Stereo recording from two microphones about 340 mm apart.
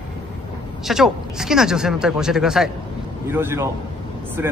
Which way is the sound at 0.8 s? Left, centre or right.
Centre.